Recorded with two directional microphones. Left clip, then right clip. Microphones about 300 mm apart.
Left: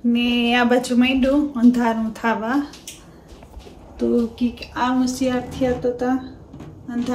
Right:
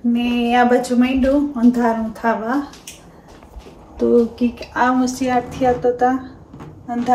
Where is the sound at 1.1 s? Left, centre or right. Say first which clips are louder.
Right 2 dB; centre.